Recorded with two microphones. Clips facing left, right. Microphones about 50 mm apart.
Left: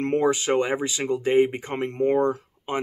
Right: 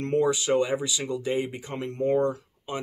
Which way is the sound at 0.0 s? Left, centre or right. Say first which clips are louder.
Left 2 dB; left.